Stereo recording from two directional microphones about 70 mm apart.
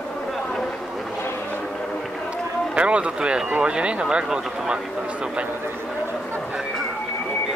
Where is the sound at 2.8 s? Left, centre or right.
Centre.